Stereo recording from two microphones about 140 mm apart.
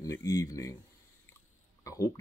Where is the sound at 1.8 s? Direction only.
20° left (ahead or behind).